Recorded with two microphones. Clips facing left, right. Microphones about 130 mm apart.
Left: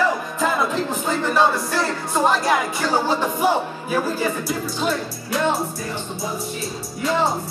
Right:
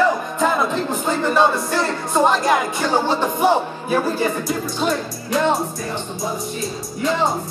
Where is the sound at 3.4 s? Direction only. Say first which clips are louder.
Right 3 dB; 25° right (ahead or behind).